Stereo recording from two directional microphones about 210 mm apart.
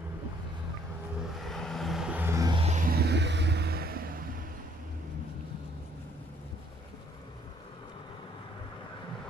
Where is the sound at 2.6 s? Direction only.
40° right (ahead or behind).